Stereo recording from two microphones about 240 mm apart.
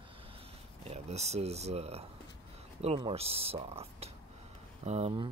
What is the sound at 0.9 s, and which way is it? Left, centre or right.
Speech, right.